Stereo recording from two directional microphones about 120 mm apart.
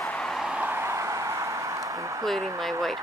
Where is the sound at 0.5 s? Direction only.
15° right (ahead or behind).